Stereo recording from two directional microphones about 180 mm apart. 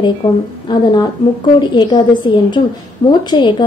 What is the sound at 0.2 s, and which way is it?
A woman's voice, 25° left (ahead or behind).